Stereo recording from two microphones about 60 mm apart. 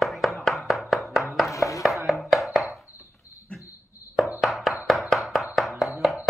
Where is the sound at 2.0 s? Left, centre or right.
Centre.